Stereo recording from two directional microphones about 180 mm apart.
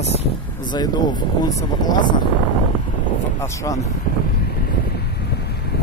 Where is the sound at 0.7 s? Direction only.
25° left (ahead or behind).